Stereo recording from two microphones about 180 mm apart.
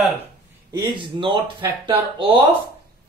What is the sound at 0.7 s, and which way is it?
Speech, 25° right (ahead or behind).